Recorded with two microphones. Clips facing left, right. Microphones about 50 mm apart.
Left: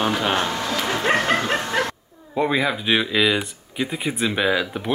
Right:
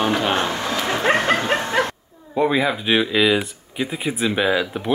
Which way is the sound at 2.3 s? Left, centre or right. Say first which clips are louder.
Right 2 dB; centre.